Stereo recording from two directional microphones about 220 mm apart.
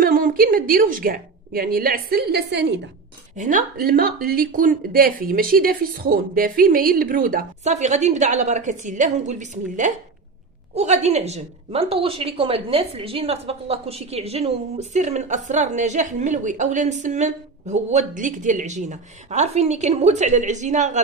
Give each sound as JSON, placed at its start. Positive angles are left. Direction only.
{"t": 0.0, "sound": "a woman's voice", "side_deg": -40}
{"t": 3.3, "sound": "a woman's voice", "side_deg": -35}